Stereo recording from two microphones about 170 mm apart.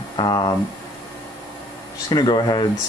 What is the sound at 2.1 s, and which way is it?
Speech, 25° left (ahead or behind).